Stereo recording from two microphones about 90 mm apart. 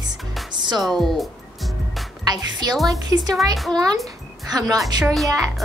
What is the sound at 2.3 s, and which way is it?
A woman's voice, 50° right (ahead or behind).